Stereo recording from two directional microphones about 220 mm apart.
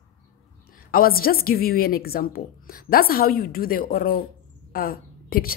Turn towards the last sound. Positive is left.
turn(degrees=40)  # may be behind; listen again after turning